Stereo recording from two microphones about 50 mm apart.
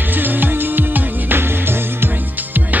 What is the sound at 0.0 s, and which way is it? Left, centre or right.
Music, right.